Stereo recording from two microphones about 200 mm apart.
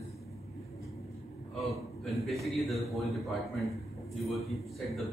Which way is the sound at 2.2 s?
Centre (ahead or behind).